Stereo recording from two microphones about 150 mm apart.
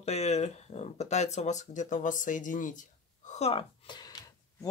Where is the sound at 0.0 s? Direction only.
45° left (ahead or behind).